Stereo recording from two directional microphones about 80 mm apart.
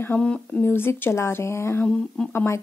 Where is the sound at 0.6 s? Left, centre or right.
Left.